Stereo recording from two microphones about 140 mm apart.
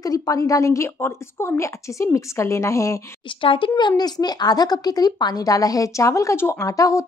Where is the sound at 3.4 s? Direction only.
40° left (ahead or behind).